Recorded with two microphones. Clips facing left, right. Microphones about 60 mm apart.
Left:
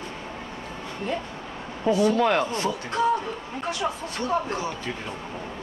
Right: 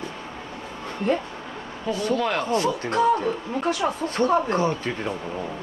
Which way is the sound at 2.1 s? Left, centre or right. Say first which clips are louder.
Left 3 dB; centre.